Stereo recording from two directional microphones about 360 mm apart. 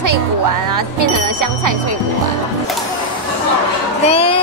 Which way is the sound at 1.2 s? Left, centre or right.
Right.